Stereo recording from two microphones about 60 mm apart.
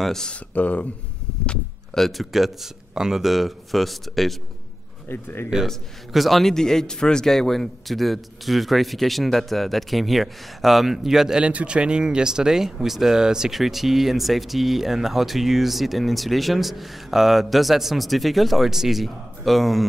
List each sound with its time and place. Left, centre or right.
0.0 s speech: centre
0.3 s speech: left
2.0 s speech: centre
5.0 s speech: left
5.7 s speech: centre